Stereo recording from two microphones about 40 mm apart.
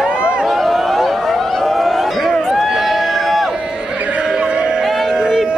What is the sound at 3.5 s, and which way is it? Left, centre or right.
Crowd, right.